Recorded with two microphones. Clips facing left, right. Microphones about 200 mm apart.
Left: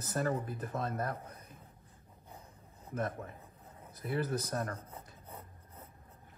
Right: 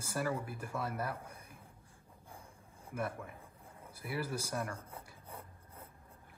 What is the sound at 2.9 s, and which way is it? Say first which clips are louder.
Speech: left 2 dB; 10° right (ahead or behind).